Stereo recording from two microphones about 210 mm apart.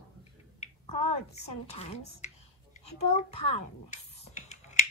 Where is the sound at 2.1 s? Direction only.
35° left (ahead or behind).